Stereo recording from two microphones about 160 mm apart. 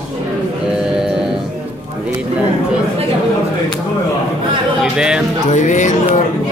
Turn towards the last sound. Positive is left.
turn(degrees=50)  # may be behind; listen again after turning